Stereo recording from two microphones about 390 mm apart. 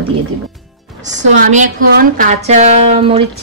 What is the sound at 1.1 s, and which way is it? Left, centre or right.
A woman's voice, centre.